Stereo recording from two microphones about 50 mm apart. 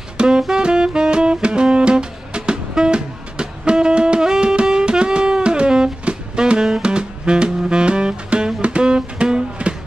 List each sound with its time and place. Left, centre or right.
0.4 s saxophone: centre